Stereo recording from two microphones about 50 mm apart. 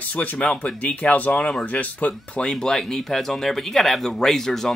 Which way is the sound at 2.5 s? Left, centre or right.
Centre.